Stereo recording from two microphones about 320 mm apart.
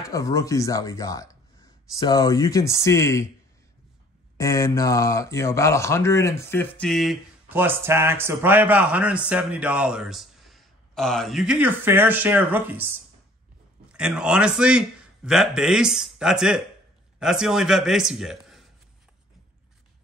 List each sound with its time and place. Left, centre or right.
0.0 s speech: centre
4.4 s speech: centre
13.9 s speech: centre